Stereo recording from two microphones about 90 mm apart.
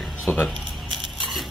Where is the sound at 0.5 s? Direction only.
5° right (ahead or behind).